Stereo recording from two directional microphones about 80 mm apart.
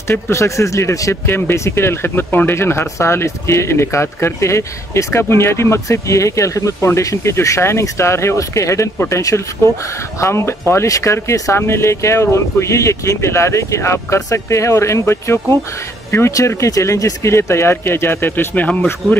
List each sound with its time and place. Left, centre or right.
0.1 s speech: left; by 18.9 s centre